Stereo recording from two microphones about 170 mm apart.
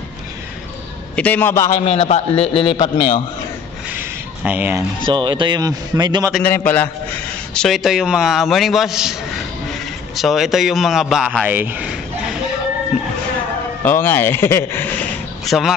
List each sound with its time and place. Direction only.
1.1 s speech: 10° left (ahead or behind)
1.7 s a man's voice: 40° left (ahead or behind)
3.9 s a sound: 10° right (ahead or behind)
5.0 s speech: 25° right (ahead or behind)
6.4 s a man's voice: 10° left (ahead or behind); by 12.4 s 5° right (ahead or behind)
13.8 s speech: 15° left (ahead or behind)
15.4 s speech: centre (ahead or behind)